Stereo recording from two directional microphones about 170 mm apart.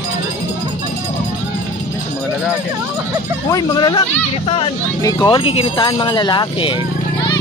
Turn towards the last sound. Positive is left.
turn(degrees=30)  # may be behind; listen again after turning